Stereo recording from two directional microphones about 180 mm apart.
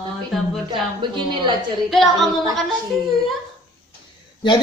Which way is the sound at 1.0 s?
25° right (ahead or behind).